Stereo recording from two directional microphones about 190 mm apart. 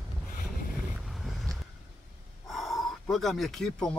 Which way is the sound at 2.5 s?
Centre (ahead or behind).